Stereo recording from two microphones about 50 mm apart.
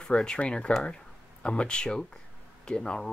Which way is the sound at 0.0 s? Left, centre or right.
Centre.